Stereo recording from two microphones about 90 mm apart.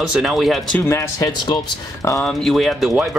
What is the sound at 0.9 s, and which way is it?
Speech, 35° left (ahead or behind).